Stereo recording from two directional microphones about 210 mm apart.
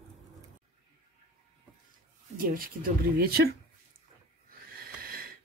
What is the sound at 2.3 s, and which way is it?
Speech, 45° right (ahead or behind).